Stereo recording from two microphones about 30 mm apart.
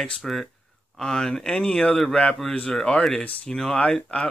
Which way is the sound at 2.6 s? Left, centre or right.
Left.